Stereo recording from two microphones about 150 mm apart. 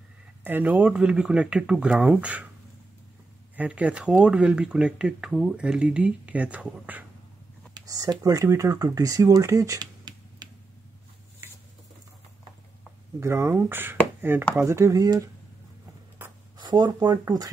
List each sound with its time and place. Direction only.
0.4 s speech: 10° right (ahead or behind)
3.5 s speech: 10° right (ahead or behind)
7.7 s speech: 25° right (ahead or behind)
13.2 s speech: 15° right (ahead or behind)
16.2 s a sound: 10° right (ahead or behind)
16.5 s speech: 30° right (ahead or behind)